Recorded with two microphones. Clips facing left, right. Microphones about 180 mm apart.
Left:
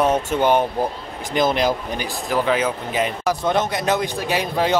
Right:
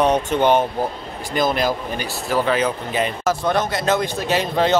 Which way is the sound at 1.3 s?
20° left (ahead or behind).